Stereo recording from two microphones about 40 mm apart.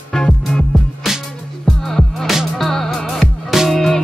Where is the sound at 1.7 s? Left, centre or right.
Centre.